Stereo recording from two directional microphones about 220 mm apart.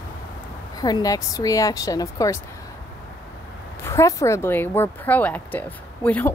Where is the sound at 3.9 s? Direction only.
15° left (ahead or behind).